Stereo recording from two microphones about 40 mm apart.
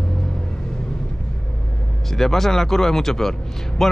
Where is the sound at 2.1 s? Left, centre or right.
Centre.